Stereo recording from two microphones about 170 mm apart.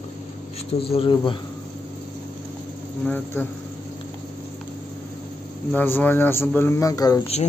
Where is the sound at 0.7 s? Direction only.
35° left (ahead or behind).